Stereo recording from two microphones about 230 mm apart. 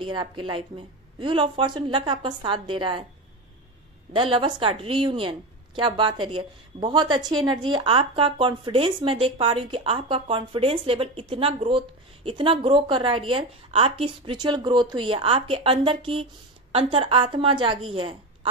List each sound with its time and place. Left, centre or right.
0.0 s a woman's voice: right
4.1 s a woman's voice: right